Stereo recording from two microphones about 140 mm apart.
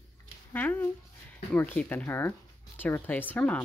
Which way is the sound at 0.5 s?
15° left (ahead or behind).